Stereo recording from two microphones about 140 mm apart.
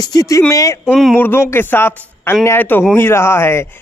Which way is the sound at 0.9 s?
10° left (ahead or behind).